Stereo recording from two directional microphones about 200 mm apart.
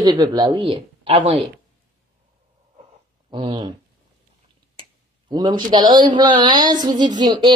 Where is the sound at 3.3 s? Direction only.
25° right (ahead or behind).